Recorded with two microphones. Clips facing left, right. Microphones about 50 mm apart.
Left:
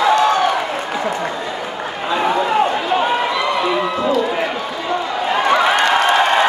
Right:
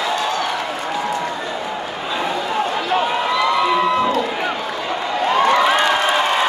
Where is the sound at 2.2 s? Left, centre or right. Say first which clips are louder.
Left 6 dB; left.